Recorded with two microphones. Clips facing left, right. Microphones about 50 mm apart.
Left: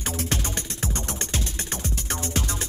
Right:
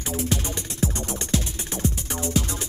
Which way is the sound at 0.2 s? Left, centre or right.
Left.